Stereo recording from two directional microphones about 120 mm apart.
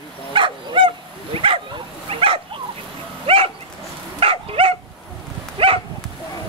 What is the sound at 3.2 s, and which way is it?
Dog, 50° right (ahead or behind).